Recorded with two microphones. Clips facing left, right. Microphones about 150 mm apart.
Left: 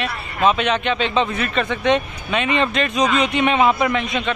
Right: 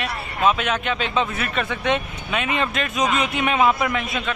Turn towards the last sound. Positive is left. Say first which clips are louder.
# left 4 dB
turn(degrees=-5)  # may be behind; listen again after turning